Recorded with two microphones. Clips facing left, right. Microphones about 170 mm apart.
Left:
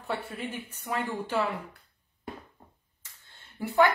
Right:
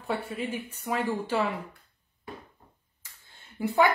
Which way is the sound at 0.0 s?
10° right (ahead or behind).